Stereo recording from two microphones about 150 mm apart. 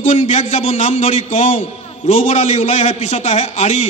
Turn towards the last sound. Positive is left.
turn(degrees=50)  # may be behind; listen again after turning